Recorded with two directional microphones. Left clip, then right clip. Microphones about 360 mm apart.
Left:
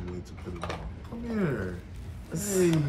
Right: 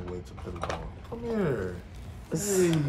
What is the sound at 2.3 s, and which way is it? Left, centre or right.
Speech, right.